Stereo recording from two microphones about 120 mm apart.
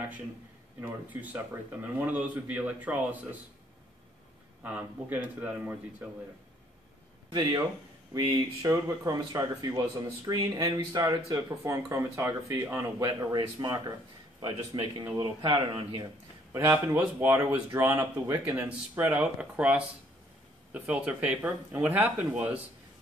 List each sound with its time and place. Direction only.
0.7 s speech: 15° right (ahead or behind)
4.6 s speech: 15° right (ahead or behind)
8.1 s speech: 40° right (ahead or behind)
16.5 s speech: 20° right (ahead or behind)
17.9 s speech: 25° right (ahead or behind)
18.5 s speech: 15° right (ahead or behind)